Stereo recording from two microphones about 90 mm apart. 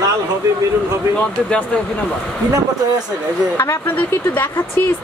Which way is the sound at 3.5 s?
30° left (ahead or behind).